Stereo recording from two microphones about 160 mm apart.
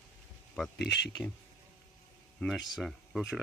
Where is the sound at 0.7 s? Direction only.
90° left.